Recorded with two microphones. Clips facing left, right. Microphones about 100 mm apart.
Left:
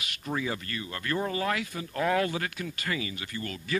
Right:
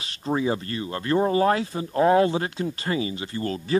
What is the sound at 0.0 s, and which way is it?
Speech, 30° right (ahead or behind).